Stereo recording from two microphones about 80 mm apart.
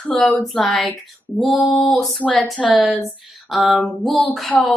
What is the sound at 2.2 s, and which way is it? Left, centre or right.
Speech, centre.